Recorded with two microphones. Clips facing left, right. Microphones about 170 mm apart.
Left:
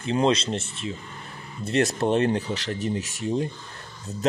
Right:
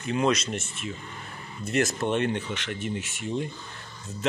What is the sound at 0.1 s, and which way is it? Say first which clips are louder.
A man's voice: left 3 dB; 30° left (ahead or behind).